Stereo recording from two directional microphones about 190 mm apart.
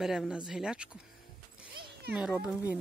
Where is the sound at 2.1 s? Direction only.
5° right (ahead or behind).